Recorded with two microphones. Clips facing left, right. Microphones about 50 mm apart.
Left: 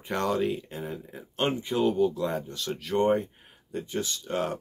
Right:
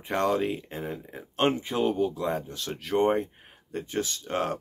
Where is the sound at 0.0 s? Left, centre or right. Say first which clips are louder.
Right 1 dB; right.